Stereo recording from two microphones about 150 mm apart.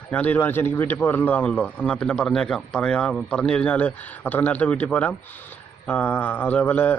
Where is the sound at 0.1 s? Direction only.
10° left (ahead or behind).